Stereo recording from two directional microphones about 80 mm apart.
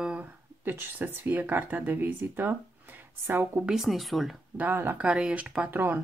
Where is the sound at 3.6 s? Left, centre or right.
Centre.